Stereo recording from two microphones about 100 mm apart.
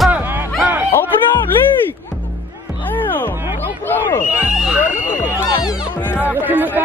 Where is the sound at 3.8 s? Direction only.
20° left (ahead or behind).